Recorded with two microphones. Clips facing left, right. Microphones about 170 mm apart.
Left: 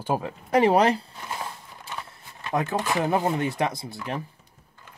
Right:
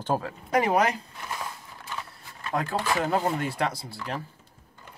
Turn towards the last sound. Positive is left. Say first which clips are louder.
# left 2 dB
turn(degrees=20)  # may be behind; listen again after turning